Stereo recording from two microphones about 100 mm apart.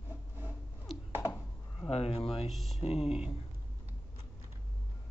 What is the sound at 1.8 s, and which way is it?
Speech, 80° left.